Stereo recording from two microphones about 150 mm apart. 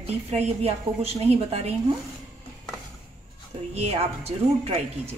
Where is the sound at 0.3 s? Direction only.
45° right (ahead or behind).